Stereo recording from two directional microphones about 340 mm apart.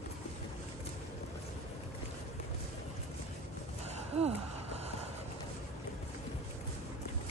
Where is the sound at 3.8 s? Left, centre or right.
Centre.